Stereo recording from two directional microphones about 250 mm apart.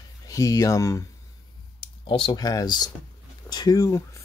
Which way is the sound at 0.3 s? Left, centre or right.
Centre.